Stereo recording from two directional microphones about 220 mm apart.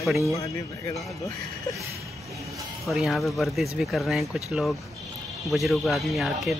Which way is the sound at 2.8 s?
Centre (ahead or behind).